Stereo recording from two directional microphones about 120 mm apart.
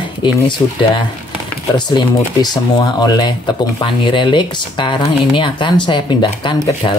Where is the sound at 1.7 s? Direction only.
35° left (ahead or behind).